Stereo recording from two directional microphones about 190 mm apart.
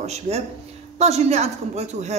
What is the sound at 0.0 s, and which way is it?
A man's voice, 35° right (ahead or behind).